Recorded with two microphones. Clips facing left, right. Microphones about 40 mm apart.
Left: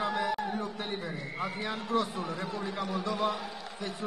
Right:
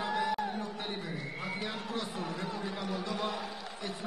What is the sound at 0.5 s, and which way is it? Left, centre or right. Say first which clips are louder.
Speech: left 3 dB; left.